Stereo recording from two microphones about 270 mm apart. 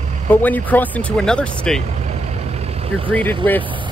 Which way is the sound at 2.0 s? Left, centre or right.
Right.